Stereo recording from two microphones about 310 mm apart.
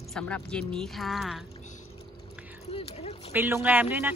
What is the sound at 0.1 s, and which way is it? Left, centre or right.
Speech, centre.